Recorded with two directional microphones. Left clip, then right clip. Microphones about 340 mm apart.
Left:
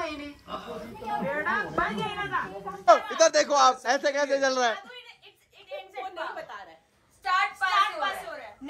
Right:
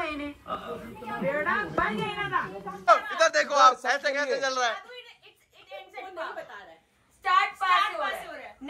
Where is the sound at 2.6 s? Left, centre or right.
Left.